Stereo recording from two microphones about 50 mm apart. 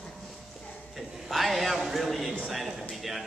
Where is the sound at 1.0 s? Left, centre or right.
Centre.